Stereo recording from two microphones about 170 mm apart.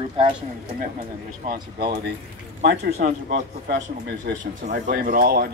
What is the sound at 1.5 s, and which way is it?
Speech, 65° right (ahead or behind).